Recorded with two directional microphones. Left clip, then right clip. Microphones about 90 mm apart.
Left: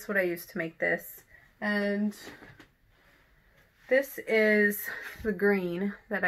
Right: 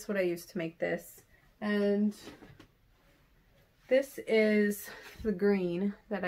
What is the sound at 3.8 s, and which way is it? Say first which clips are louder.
A woman's voice: left 2 dB; 30° right (ahead or behind).